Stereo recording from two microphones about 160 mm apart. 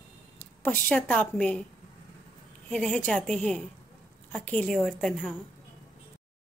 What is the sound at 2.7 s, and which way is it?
A woman's voice, 5° left (ahead or behind).